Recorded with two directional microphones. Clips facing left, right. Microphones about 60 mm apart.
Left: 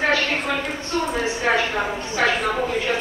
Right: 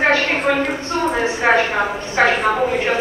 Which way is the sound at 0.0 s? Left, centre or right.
Right.